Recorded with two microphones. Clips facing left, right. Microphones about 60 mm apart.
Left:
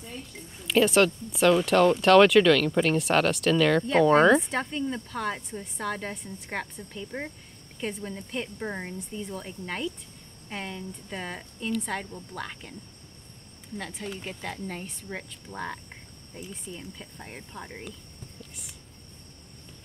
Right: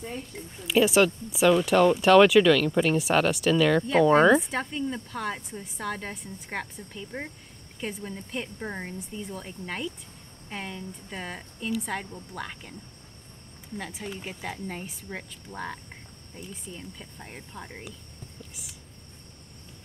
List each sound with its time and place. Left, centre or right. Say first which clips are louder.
0.6 s speech: even; centre
13.7 s speech: even; centre
18.5 s a sound: even; centre